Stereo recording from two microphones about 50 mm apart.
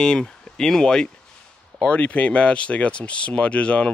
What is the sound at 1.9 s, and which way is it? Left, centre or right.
Speech, left.